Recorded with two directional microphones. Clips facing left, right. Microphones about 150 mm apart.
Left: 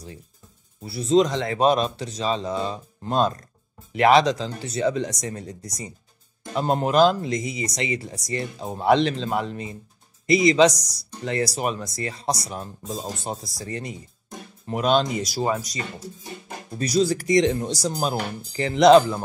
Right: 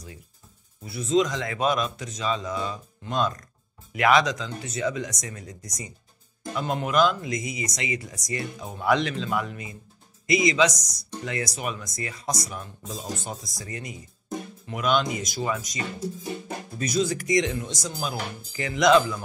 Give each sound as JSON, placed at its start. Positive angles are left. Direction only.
{"t": 0.8, "sound": "speech", "side_deg": 35}